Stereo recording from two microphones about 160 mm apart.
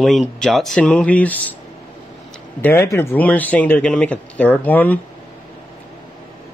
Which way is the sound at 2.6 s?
15° left (ahead or behind).